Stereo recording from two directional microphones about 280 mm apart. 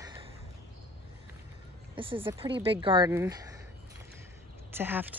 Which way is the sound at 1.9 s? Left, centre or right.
Centre.